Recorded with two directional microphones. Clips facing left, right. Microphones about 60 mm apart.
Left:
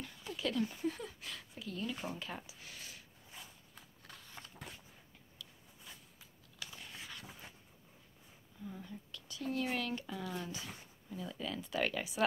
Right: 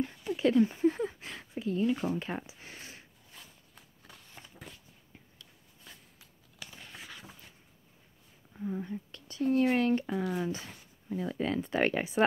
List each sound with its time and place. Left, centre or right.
0.0 s a sound: right
3.3 s walk: centre
3.7 s walk: centre
6.8 s a sound: centre
8.5 s speech: right
10.2 s speech: centre
11.1 s speech: right